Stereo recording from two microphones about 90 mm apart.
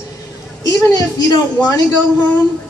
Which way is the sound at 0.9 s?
45° left (ahead or behind).